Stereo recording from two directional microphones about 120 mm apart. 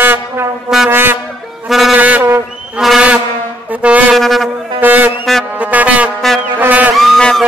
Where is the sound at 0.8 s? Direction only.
15° right (ahead or behind).